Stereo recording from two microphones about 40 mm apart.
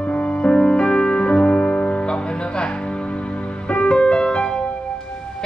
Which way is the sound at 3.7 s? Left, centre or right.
Left.